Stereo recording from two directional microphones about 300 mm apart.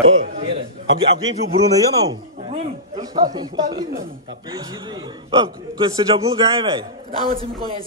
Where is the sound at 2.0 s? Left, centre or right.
Centre.